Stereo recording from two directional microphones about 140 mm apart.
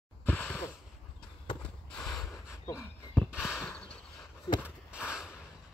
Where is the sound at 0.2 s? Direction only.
10° left (ahead or behind).